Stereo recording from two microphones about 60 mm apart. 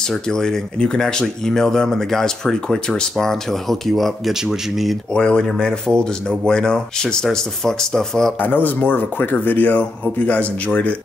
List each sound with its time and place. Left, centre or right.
0.1 s speech: centre
4.3 s a man's voice: centre
5.1 s speech: centre
8.4 s speech: left